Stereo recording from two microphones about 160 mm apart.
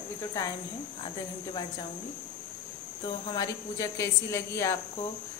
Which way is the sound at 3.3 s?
20° left (ahead or behind).